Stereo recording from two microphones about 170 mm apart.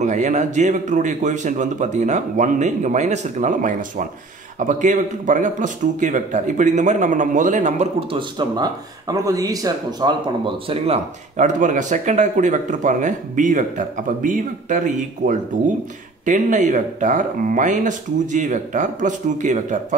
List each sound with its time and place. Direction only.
0.0 s speech: 45° right (ahead or behind)
8.1 s speech: 25° right (ahead or behind)
11.3 s speech: 45° right (ahead or behind)